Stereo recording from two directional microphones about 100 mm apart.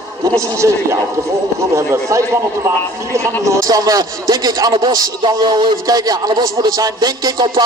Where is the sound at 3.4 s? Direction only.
35° right (ahead or behind).